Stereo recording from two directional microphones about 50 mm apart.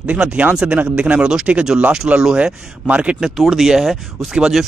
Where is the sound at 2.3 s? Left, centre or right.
Centre.